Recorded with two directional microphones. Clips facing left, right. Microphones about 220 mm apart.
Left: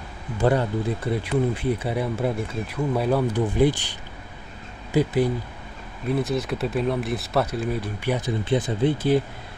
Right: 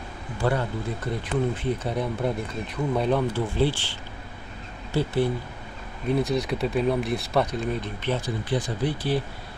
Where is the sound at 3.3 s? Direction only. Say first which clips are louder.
Left 4 dB; 15° left (ahead or behind).